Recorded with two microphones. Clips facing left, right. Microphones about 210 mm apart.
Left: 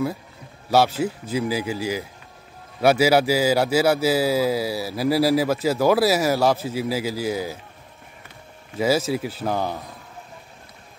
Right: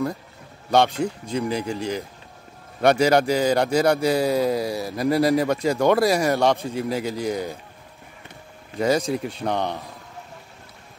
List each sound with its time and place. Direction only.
0.7 s a man's voice: 5° left (ahead or behind)
8.7 s a man's voice: 5° left (ahead or behind)